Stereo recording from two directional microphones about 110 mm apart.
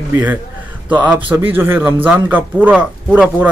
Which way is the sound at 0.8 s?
15° right (ahead or behind).